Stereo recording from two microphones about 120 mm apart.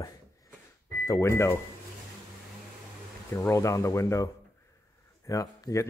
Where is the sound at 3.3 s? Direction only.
25° left (ahead or behind).